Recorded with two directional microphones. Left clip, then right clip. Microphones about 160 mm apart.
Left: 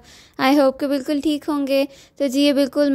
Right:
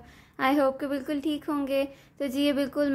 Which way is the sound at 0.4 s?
65° left (ahead or behind).